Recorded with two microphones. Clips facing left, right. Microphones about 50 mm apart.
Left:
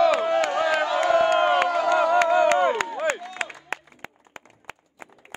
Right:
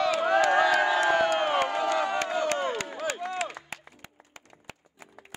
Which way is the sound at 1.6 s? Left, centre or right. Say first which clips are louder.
Left 6 dB; left.